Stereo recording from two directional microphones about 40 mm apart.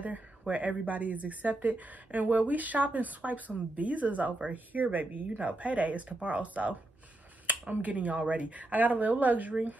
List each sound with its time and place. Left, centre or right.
0.0 s speech: right